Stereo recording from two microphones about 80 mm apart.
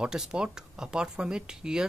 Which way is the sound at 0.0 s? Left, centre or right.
Centre.